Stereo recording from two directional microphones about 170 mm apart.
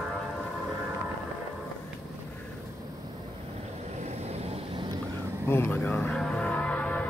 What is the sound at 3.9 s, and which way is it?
Vehicle, 40° right (ahead or behind).